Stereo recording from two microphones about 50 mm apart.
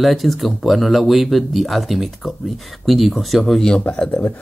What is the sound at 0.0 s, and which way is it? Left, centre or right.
Speech, centre.